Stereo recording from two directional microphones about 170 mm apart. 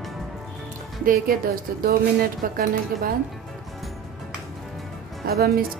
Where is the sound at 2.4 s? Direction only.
55° right (ahead or behind).